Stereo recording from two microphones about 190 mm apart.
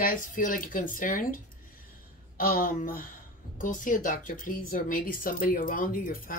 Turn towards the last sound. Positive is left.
turn(degrees=45)  # may be behind; listen again after turning